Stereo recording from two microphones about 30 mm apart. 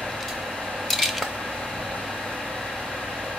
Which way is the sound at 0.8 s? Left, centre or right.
Centre.